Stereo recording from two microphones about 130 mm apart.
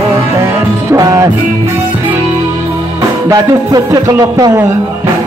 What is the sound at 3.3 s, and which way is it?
A man's voice, 25° right (ahead or behind).